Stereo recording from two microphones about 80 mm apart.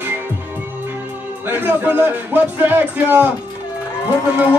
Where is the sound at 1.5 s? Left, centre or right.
Right.